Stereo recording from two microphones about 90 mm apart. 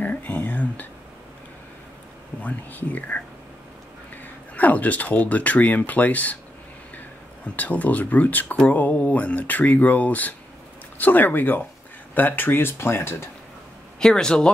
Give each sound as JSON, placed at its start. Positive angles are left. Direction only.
{"t": 0.0, "sound": "a sound", "side_deg": 20}
{"t": 2.4, "sound": "speech", "side_deg": 20}
{"t": 4.2, "sound": "speech", "side_deg": 20}
{"t": 7.5, "sound": "speech", "side_deg": 15}
{"t": 13.9, "sound": "speech", "side_deg": 5}